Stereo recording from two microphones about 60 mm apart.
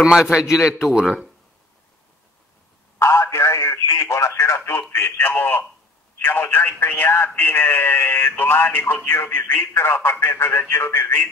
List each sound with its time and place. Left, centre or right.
0.0 s a man's voice: centre
3.0 s a sound: left
4.9 s speech: left